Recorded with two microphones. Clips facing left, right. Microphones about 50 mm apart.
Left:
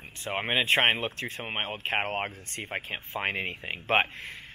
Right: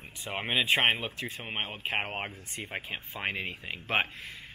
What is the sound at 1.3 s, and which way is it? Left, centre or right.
Speech, left.